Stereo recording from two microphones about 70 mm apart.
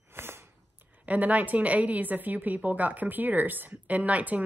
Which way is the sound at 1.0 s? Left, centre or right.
Right.